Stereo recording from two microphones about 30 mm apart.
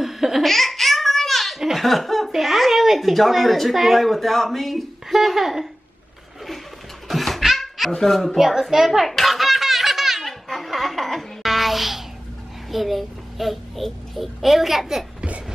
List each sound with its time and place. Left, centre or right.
0.0 s laughter: centre
0.4 s baby laughter: centre
1.8 s a child's voice: centre
7.1 s laughter: centre
8.4 s a child's voice: centre
9.0 s belly laugh: centre
10.2 s laughter: centre
11.4 s a sound: centre
12.7 s a child's voice: centre